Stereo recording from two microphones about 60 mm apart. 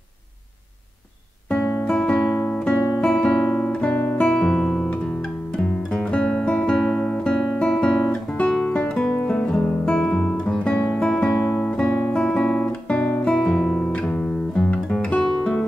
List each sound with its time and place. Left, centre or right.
1.9 s music: centre
2.4 s guitar: centre
3.0 s music: centre
3.4 s music: centre
3.7 s guitar: left
4.8 s music: left
6.8 s guitar: centre
8.1 s music: centre
11.6 s guitar: centre
14.1 s music: centre
14.7 s guitar: left